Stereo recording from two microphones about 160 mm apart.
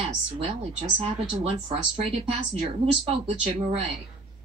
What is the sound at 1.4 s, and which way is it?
Speech, 40° right (ahead or behind).